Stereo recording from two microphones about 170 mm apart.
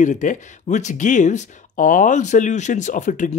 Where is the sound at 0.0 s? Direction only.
45° left (ahead or behind).